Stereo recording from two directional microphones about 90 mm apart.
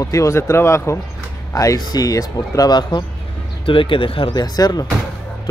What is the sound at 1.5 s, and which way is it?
Speech, 40° left (ahead or behind).